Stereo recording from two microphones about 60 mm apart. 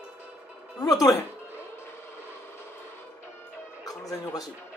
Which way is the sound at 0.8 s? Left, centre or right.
Left.